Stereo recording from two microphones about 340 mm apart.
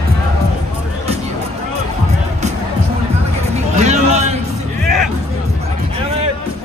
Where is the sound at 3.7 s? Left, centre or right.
Centre.